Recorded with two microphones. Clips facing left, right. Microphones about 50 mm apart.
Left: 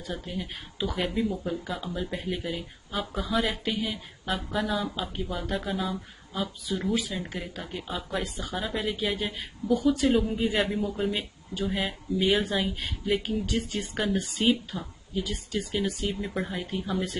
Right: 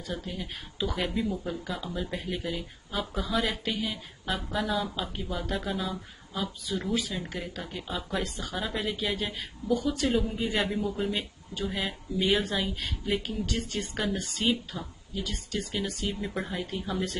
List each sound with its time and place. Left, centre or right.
0.0 s speech: centre